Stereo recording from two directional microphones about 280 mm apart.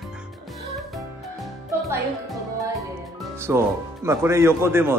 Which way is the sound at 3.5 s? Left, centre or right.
Centre.